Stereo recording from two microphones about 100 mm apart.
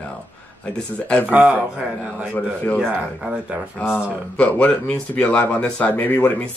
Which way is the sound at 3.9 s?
10° left (ahead or behind).